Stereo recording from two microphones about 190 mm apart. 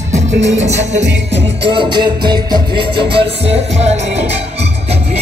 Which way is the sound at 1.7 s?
25° right (ahead or behind).